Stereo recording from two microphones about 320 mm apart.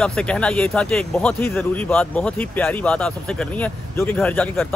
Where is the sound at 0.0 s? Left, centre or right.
Centre.